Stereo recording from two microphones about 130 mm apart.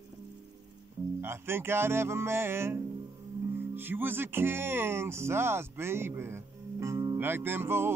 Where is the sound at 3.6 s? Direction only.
15° right (ahead or behind).